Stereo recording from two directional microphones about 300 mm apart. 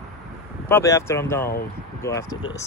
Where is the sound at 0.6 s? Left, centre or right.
Centre.